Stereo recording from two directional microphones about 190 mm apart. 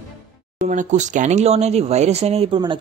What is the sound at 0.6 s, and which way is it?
Speech, 40° right (ahead or behind).